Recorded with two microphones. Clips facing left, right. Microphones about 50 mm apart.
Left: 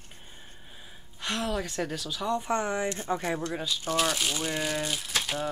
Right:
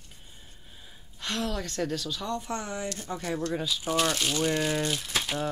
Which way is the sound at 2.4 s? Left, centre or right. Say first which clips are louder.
Left 5 dB; left.